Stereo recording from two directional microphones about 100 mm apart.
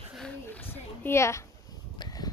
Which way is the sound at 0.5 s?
20° left (ahead or behind).